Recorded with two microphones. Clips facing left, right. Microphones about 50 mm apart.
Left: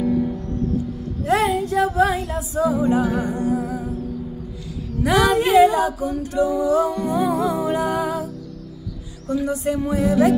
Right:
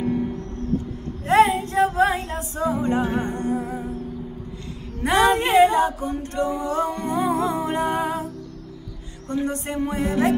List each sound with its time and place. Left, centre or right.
0.6 s music: right
4.9 s a sound: right
9.3 s music: right